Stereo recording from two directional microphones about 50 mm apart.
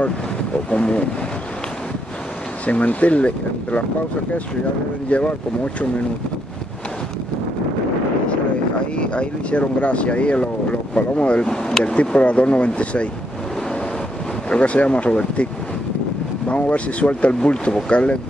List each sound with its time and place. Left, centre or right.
0.7 s speech: left
2.6 s speech: left
5.1 s speech: left
8.9 s speech: left
11.4 s speech: centre
14.5 s speech: left
16.4 s speech: left